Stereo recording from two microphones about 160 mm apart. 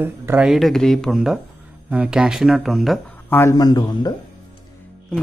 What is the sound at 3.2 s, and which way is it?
Speech, 15° left (ahead or behind).